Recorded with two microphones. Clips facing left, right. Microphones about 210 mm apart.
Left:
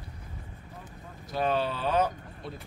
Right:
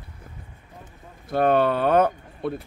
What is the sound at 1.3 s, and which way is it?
Speech, 55° right (ahead or behind).